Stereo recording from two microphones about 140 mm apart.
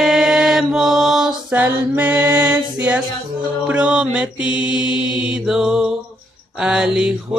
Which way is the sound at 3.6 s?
5° right (ahead or behind).